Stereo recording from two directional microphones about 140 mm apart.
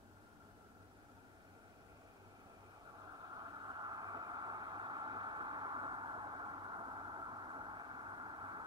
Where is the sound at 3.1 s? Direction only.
30° right (ahead or behind).